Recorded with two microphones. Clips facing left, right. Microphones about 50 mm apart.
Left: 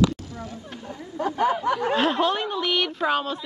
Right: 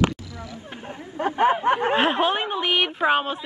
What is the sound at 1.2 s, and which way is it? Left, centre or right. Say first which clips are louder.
A woman's voice: right 3 dB; right.